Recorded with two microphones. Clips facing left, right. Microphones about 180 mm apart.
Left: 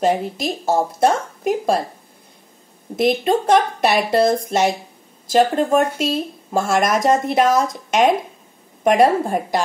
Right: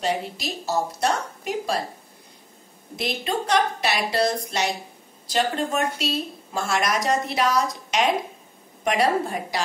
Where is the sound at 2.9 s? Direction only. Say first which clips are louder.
Left 10 dB; 50° left (ahead or behind).